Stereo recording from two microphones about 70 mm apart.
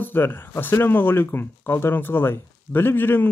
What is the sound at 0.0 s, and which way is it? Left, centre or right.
Speech, left.